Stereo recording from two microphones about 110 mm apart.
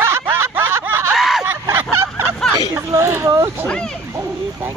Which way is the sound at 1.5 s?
20° right (ahead or behind).